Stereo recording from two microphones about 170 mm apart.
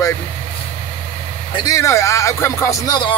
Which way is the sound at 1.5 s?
20° left (ahead or behind).